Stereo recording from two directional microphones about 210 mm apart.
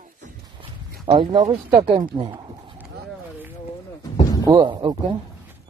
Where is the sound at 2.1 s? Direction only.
25° right (ahead or behind).